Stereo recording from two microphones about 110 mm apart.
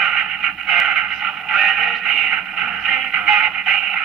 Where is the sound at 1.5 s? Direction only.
5° right (ahead or behind).